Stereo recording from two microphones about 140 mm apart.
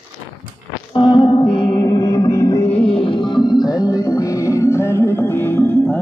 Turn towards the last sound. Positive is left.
turn(degrees=10)  # may be behind; listen again after turning